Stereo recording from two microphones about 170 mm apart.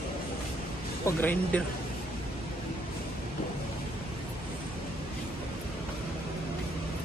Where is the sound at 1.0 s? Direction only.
10° left (ahead or behind).